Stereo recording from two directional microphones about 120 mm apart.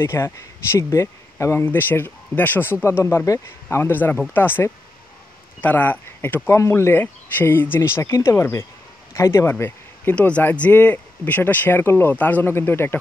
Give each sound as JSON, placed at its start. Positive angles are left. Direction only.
{"t": 0.0, "sound": "speech", "side_deg": 20}